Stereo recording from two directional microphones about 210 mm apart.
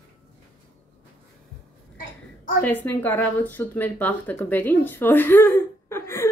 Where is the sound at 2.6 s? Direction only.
10° left (ahead or behind).